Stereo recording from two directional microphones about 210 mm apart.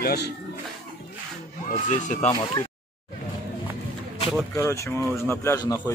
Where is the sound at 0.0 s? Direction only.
50° left (ahead or behind).